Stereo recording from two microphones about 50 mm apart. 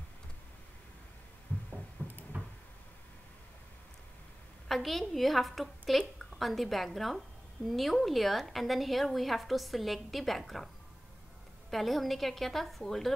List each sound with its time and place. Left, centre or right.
1.5 s a sound: left
4.6 s a woman's voice: centre
11.7 s a woman's voice: centre